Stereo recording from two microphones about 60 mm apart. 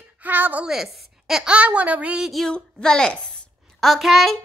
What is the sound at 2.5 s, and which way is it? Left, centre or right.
Speech, centre.